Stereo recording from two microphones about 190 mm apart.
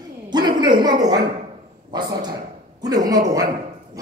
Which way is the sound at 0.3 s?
20° right (ahead or behind).